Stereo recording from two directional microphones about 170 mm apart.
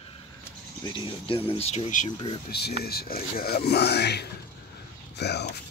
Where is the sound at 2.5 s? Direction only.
70° left (ahead or behind).